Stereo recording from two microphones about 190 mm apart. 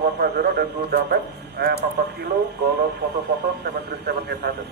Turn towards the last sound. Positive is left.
turn(degrees=-55)  # may be behind; listen again after turning